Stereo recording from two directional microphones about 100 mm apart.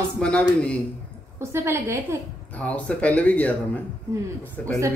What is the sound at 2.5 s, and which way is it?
A man's voice, 15° left (ahead or behind).